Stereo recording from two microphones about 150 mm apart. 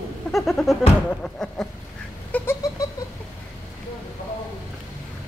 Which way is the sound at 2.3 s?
15° left (ahead or behind).